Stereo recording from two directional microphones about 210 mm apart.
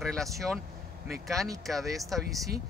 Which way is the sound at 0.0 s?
Centre (ahead or behind).